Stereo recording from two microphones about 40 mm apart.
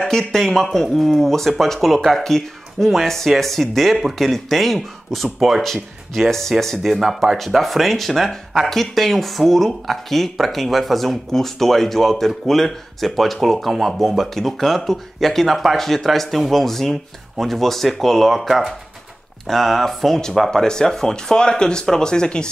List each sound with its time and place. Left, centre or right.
0.0 s speech: centre
18.3 s speech: centre
20.2 s speech: centre